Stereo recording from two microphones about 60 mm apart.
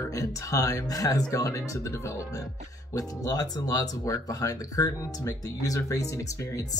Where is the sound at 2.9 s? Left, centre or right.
Left.